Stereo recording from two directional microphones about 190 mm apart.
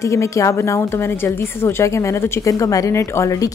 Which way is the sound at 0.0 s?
15° left (ahead or behind).